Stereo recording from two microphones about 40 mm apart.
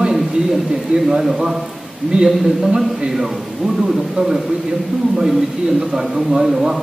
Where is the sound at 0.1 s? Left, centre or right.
Centre.